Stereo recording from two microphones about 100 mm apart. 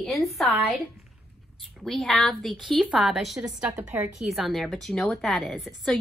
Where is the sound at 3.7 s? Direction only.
30° right (ahead or behind).